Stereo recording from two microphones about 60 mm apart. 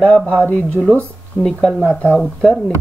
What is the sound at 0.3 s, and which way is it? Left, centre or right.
Speech, left.